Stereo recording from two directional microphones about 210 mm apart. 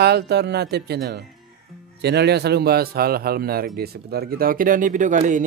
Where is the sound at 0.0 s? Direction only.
50° right (ahead or behind).